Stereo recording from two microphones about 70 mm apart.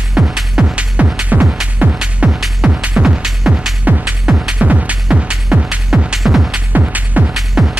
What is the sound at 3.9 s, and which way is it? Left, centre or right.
Music, centre.